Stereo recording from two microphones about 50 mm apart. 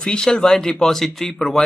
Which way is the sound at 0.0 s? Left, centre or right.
Centre.